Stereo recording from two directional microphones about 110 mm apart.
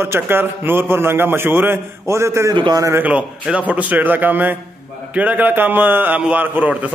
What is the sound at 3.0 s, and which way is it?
A man's voice, 10° right (ahead or behind).